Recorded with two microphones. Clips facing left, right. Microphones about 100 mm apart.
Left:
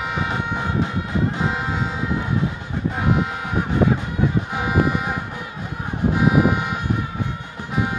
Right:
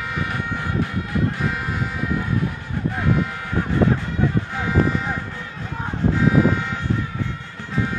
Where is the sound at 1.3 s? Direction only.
20° left (ahead or behind).